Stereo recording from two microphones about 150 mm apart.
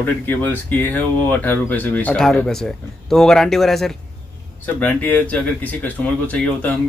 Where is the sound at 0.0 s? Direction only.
10° left (ahead or behind).